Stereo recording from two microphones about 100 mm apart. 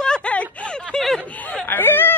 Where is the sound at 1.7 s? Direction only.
20° left (ahead or behind).